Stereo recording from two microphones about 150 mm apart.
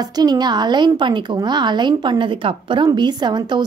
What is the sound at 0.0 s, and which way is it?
A woman's voice, 25° right (ahead or behind).